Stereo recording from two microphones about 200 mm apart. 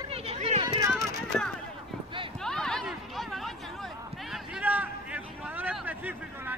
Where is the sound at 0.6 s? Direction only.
20° right (ahead or behind).